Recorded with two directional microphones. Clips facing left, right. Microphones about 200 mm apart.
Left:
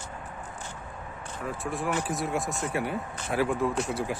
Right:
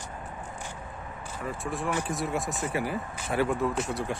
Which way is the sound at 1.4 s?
Centre (ahead or behind).